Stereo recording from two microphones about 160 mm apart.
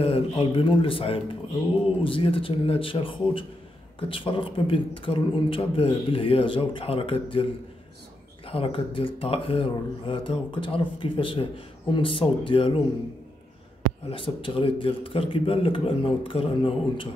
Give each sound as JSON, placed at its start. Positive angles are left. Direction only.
{"t": 0.0, "sound": "speech", "side_deg": 35}
{"t": 8.5, "sound": "speech", "side_deg": 35}
{"t": 14.0, "sound": "speech", "side_deg": 35}